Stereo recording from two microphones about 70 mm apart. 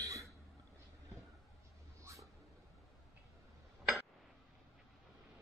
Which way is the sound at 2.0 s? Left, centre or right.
Right.